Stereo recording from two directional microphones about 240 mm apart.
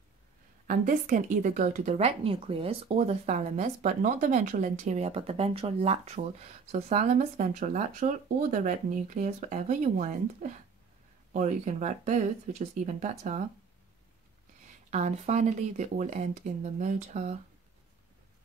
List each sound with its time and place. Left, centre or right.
0.7 s a woman's voice: right
14.9 s speech: right